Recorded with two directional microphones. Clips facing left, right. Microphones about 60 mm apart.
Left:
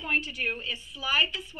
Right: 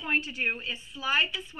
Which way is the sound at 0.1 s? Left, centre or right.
Right.